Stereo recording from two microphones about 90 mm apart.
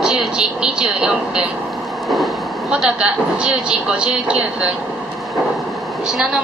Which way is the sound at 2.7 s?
10° right (ahead or behind).